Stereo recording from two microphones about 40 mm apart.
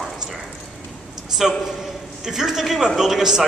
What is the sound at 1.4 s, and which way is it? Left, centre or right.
A man's voice, centre.